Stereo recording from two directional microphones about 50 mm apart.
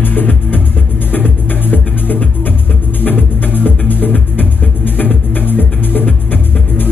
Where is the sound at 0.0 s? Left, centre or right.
Left.